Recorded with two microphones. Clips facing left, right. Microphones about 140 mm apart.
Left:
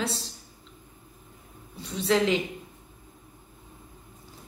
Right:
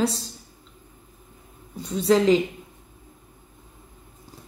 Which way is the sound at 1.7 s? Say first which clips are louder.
Right 5 dB; 40° right (ahead or behind).